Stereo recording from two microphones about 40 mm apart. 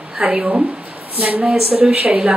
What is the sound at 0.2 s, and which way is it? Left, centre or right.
Speech, right.